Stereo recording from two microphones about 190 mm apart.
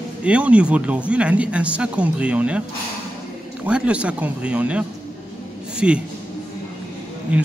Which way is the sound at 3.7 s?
5° right (ahead or behind).